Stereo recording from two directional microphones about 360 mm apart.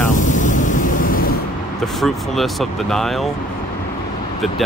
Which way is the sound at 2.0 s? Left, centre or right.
Centre.